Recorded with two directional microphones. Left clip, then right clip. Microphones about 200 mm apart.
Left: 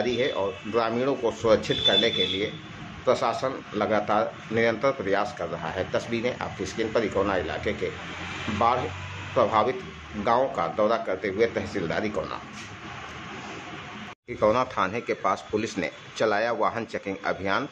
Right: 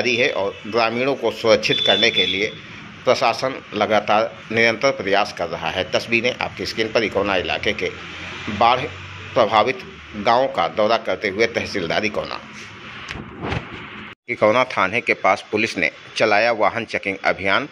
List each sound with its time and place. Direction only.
0.0 s speech: 10° right (ahead or behind)
14.4 s speech: 15° right (ahead or behind)